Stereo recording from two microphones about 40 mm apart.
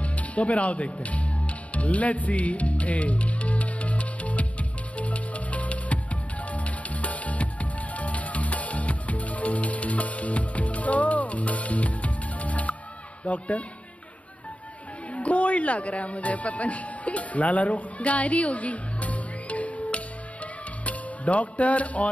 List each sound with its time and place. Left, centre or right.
0.0 s music: left
13.2 s speech: left
15.1 s music: left
20.8 s speech: left